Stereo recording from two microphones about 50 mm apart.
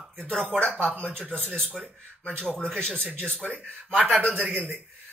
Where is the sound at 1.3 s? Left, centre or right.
Centre.